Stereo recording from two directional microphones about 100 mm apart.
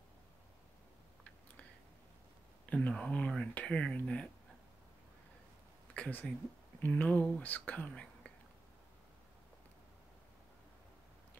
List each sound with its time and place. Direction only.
2.7 s speech: 10° left (ahead or behind)
5.9 s speech: 15° left (ahead or behind)